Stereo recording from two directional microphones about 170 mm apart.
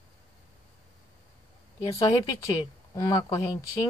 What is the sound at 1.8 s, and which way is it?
Speech, 20° left (ahead or behind).